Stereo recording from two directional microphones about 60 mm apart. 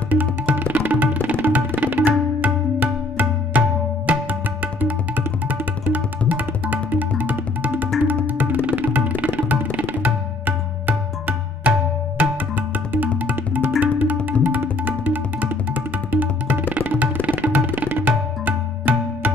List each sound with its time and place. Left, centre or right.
0.1 s tabla: right
13.2 s music: right
14.2 s tabla: right